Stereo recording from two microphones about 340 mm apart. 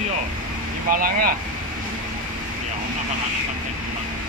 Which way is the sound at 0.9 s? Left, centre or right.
Right.